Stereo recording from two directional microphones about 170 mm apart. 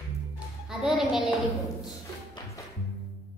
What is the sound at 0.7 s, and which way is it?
Music, centre (ahead or behind).